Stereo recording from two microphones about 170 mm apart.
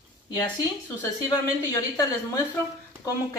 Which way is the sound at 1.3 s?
20° left (ahead or behind).